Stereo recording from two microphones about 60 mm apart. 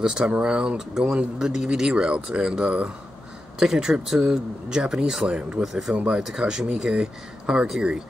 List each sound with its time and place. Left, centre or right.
0.0 s speech: centre